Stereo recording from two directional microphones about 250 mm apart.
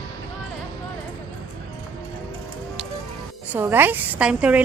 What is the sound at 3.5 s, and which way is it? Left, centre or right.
A woman's voice, centre.